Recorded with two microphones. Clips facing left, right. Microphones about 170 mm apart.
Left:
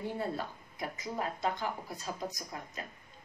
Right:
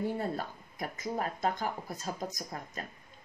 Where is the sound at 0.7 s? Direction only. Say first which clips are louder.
Right 2 dB; 50° right (ahead or behind).